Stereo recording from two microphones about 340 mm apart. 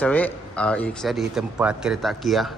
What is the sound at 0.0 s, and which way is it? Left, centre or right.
Speech, centre.